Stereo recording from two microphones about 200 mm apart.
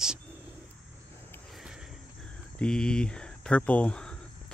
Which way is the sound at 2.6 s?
5° left (ahead or behind).